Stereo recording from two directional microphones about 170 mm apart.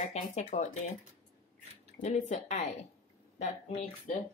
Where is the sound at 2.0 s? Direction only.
45° left (ahead or behind).